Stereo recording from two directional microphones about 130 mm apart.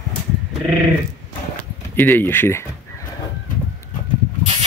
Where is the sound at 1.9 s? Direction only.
15° left (ahead or behind).